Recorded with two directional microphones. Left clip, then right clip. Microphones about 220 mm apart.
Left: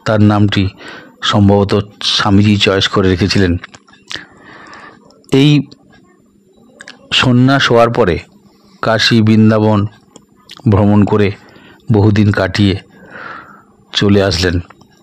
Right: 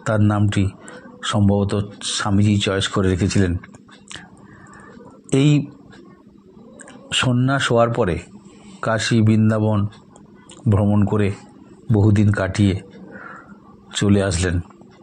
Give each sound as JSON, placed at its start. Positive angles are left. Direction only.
{"t": 0.0, "sound": "speech", "side_deg": 40}
{"t": 6.8, "sound": "speech", "side_deg": 40}